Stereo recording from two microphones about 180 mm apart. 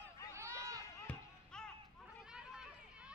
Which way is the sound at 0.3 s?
15° right (ahead or behind).